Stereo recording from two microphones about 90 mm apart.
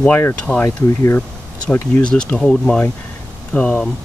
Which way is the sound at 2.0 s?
10° left (ahead or behind).